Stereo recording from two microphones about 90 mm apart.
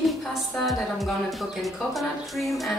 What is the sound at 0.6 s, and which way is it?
A woman's voice, centre (ahead or behind).